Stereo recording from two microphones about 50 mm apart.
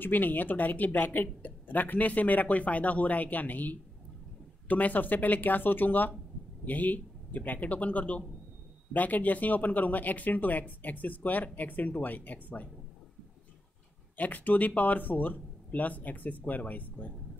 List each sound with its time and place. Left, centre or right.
0.0 s speech: left
14.1 s speech: left